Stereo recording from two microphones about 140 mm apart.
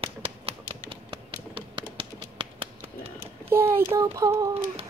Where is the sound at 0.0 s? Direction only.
40° right (ahead or behind).